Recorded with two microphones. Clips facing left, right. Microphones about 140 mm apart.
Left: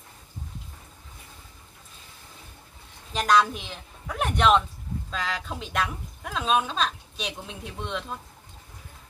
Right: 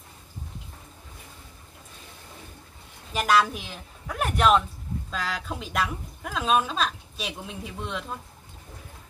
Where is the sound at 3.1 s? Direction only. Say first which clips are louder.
Left 1 dB; 5° right (ahead or behind).